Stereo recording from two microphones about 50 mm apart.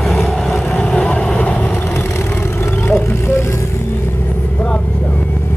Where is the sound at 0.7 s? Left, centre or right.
Centre.